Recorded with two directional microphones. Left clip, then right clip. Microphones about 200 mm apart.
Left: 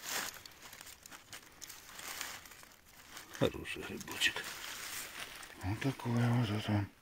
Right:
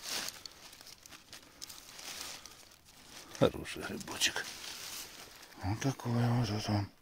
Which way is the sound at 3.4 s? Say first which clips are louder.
Right 4 dB; 30° right (ahead or behind).